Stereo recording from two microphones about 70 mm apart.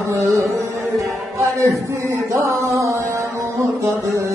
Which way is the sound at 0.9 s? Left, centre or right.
Right.